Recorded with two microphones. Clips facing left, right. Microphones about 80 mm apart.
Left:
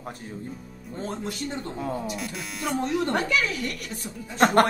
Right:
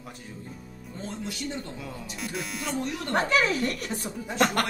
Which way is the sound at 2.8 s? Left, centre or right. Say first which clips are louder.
Left 7 dB; left.